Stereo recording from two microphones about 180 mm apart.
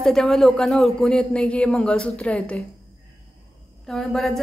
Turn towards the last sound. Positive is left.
turn(degrees=0)  # may be behind; listen again after turning